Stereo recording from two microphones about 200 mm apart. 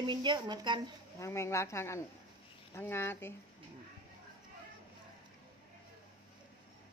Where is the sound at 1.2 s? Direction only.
15° left (ahead or behind).